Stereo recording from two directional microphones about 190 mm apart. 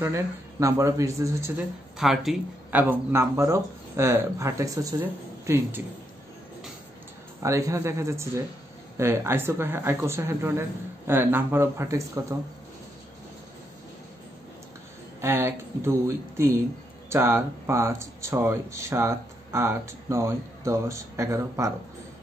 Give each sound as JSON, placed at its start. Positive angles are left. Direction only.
{"t": 0.0, "sound": "speech", "side_deg": -15}
{"t": 2.0, "sound": "speech", "side_deg": 0}
{"t": 7.4, "sound": "speech", "side_deg": -15}
{"t": 15.1, "sound": "speech", "side_deg": -10}